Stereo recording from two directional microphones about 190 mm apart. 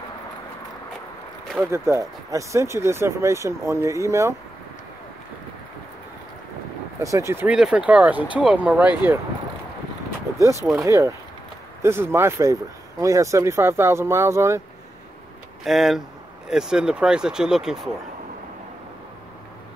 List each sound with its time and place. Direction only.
1.4 s a sound: centre (ahead or behind)
1.7 s speech: 15° right (ahead or behind)
7.0 s speech: 15° right (ahead or behind)
10.6 s speech: 15° right (ahead or behind)
15.6 s speech: centre (ahead or behind)